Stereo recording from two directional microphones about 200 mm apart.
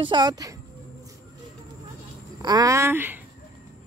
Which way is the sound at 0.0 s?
20° right (ahead or behind).